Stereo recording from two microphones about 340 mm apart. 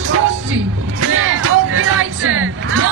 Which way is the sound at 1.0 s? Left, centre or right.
Right.